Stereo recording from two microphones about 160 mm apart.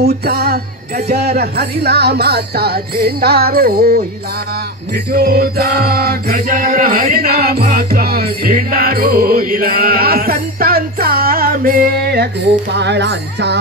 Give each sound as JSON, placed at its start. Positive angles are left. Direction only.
{"t": 0.0, "sound": "music", "side_deg": -80}
{"t": 12.7, "sound": "speech", "side_deg": -90}